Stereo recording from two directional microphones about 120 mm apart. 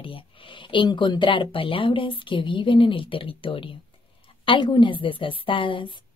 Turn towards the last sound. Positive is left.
turn(degrees=40)  # may be behind; listen again after turning